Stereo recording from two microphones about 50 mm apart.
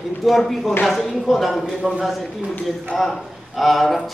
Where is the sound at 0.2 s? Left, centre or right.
Centre.